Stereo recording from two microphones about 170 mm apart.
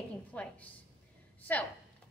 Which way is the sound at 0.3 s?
10° left (ahead or behind).